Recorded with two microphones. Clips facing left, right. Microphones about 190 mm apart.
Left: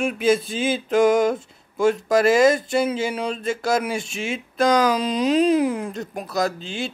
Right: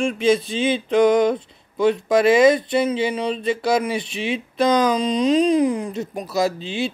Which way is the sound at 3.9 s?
45° left (ahead or behind).